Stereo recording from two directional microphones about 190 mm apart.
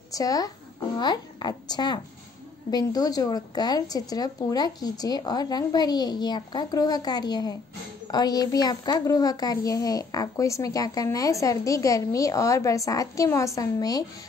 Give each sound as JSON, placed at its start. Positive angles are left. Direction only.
{"t": 0.1, "sound": "a woman's voice", "side_deg": 20}